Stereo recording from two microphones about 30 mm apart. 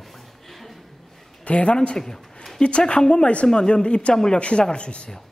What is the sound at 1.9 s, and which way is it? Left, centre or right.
Speech, centre.